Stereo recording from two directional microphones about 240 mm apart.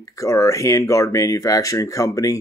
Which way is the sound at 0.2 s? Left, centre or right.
Centre.